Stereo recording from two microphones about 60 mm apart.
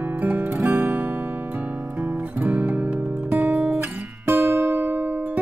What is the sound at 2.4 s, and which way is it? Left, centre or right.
Music, right.